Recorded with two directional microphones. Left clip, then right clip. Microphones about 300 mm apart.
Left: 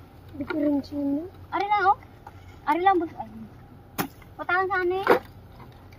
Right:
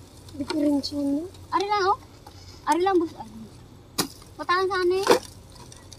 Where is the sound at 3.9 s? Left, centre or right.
Centre.